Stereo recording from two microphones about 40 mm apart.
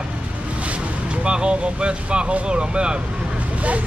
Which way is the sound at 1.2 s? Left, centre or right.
Right.